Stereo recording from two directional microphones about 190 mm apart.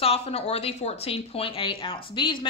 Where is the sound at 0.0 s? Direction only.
30° left (ahead or behind).